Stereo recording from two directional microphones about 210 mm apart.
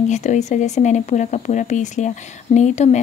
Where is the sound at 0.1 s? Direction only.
35° left (ahead or behind).